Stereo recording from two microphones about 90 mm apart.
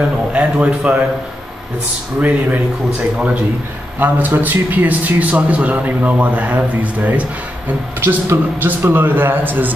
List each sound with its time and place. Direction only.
0.3 s a man's voice: 15° right (ahead or behind)
2.1 s a man's voice: 20° right (ahead or behind)
4.0 s a man's voice: 20° right (ahead or behind)